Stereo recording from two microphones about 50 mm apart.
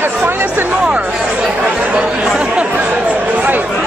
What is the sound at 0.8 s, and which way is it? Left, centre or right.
Music, right.